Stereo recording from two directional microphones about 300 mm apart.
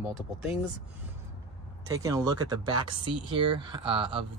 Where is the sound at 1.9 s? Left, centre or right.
Centre.